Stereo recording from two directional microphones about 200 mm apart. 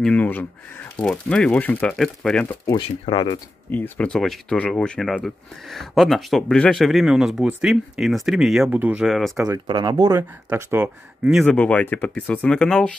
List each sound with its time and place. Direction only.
0.0 s speech: 5° left (ahead or behind)
2.6 s speech: 20° left (ahead or behind)
3.7 s speech: 10° left (ahead or behind)
9.5 s speech: 20° right (ahead or behind)
11.3 s speech: 5° left (ahead or behind)